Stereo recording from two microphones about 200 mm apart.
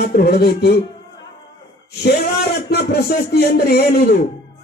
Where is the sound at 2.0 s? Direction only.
50° left (ahead or behind).